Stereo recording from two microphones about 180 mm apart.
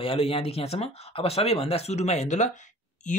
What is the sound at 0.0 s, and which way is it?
Speech, 30° left (ahead or behind).